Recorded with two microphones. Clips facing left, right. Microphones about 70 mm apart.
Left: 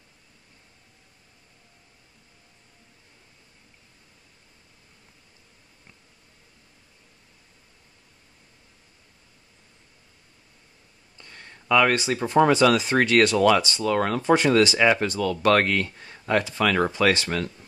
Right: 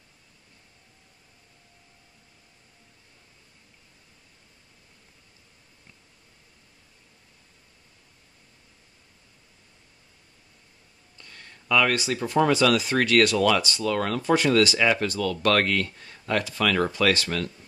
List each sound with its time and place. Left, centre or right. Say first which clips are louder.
11.1 s speech: left 2 dB; left